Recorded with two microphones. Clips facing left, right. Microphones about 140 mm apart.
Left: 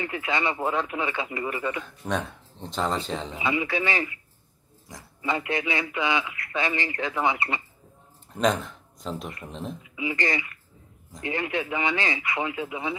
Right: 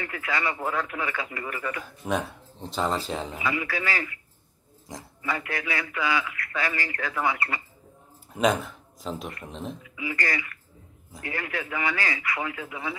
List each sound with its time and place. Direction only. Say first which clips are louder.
0.0 s a man's voice: left 2 dB; 20° left (ahead or behind)
2.0 s speech: right 2 dB; 5° right (ahead or behind)
3.3 s a man's voice: left 5 dB; 25° left (ahead or behind)
4.9 s speech: right 5 dB; 20° right (ahead or behind)
5.2 s a man's voice: left 4 dB; 20° left (ahead or behind)
8.3 s speech: even; 5° right (ahead or behind)
9.8 s a man's voice: left 4 dB; 20° left (ahead or behind)